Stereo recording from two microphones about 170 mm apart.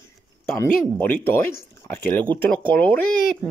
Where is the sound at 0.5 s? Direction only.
15° left (ahead or behind).